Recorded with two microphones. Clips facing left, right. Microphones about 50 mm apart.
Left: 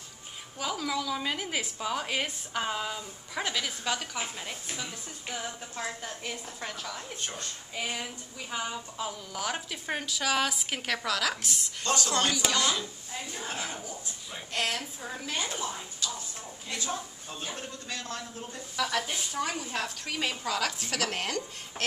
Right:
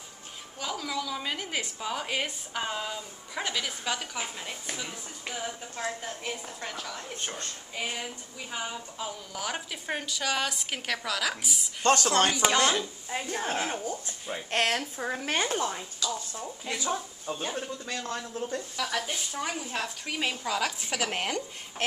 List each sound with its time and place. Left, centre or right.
0.6 s a woman's voice: centre
7.0 s a woman's voice: centre
11.8 s speech: right
12.3 s a man's voice: right
12.5 s speech: right
16.8 s speech: centre
17.5 s a man's voice: right
18.8 s a woman's voice: centre